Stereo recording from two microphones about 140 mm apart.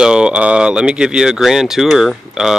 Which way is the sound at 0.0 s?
5° right (ahead or behind).